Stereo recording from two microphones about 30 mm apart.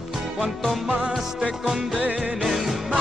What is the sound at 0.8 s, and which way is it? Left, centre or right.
Music, right.